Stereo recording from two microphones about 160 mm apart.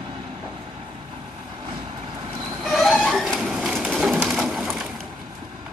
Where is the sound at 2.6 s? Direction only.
Centre (ahead or behind).